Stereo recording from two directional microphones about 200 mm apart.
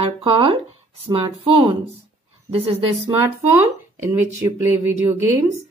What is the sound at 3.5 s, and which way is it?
Speech, 15° right (ahead or behind).